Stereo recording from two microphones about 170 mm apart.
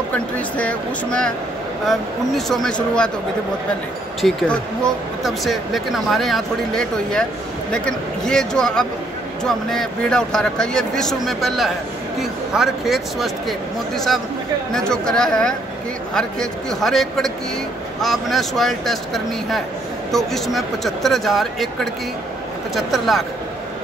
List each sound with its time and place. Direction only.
0.6 s speech: 5° left (ahead or behind)
4.2 s speech: 5° left (ahead or behind)
22.8 s speech: centre (ahead or behind)